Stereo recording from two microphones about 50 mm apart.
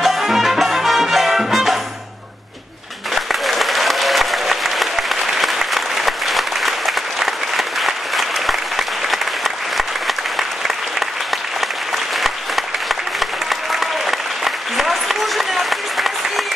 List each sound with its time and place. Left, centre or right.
0.0 s music: centre
3.3 s applause: centre
12.2 s applause: centre